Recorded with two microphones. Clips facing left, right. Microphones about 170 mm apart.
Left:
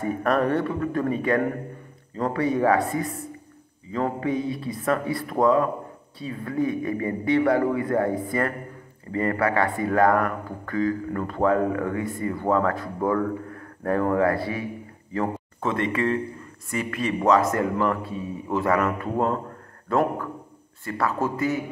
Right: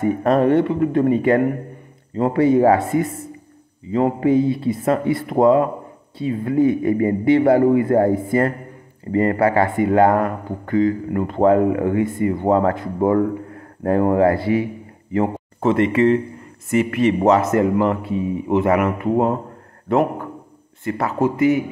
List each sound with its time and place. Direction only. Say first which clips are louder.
0.0 s a man's voice: right 6 dB; 30° right (ahead or behind)
4.2 s a man's voice: right 9 dB; 30° right (ahead or behind)
20.8 s a man's voice: right 6 dB; 20° right (ahead or behind)